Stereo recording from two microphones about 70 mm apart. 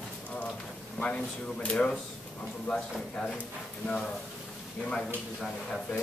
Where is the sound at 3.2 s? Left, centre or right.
Centre.